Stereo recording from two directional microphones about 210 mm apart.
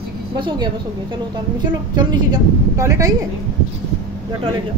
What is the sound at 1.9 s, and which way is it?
A woman's voice, 15° right (ahead or behind).